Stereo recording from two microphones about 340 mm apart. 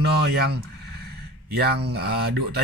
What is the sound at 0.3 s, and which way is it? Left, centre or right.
Speech, right.